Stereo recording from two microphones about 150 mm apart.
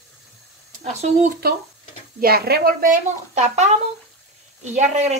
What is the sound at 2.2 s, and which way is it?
Speech, 90° right.